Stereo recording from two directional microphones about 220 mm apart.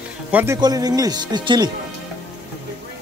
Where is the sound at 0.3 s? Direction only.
5° right (ahead or behind).